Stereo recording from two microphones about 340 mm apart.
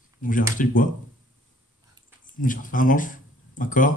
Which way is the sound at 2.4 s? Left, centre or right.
Left.